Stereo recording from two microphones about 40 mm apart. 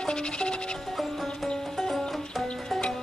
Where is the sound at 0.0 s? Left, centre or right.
Left.